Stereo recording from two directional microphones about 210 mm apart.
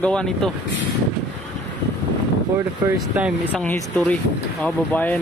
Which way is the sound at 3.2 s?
5° right (ahead or behind).